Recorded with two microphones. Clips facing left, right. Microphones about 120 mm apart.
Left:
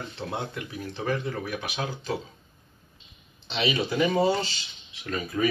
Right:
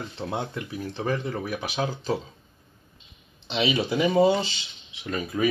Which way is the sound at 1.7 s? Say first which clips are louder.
Right 4 dB; 35° right (ahead or behind).